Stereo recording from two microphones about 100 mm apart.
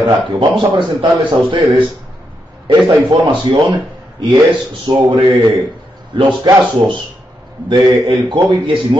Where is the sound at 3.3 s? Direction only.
55° right (ahead or behind).